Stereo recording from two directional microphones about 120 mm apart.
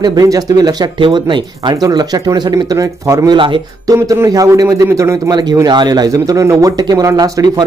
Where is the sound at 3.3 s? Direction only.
45° right (ahead or behind).